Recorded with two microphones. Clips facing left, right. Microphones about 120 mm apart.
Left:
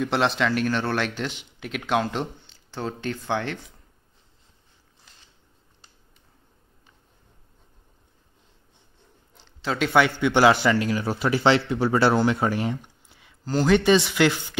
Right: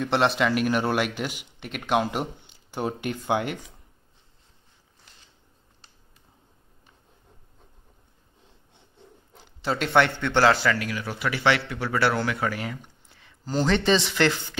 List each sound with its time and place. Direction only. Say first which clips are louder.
0.0 s a man's voice: even; centre (ahead or behind)
9.4 s a man's voice: left 1 dB; 5° right (ahead or behind); by 12.7 s 25° left (ahead or behind)
12.8 s a sound: even; 15° left (ahead or behind)
13.5 s speech: left 3 dB; 5° left (ahead or behind)